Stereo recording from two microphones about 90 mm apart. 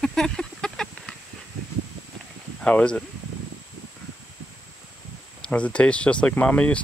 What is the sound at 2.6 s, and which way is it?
Speech, 10° left (ahead or behind).